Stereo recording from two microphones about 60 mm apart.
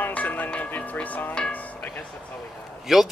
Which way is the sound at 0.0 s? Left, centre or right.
Left.